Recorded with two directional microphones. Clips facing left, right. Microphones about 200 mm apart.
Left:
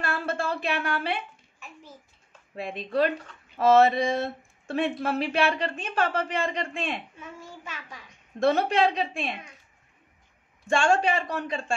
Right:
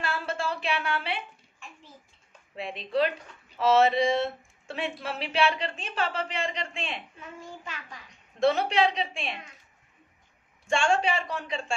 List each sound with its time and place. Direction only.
0.0 s a sound: 55° left (ahead or behind)
2.5 s speech: 50° left (ahead or behind)
8.5 s speech: 50° left (ahead or behind)
10.8 s speech: 50° left (ahead or behind)